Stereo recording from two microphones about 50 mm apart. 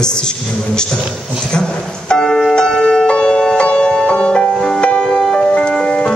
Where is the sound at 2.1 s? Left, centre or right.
Centre.